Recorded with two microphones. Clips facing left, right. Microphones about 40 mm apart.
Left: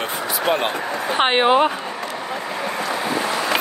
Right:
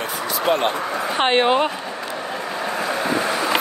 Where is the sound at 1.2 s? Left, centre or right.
Centre.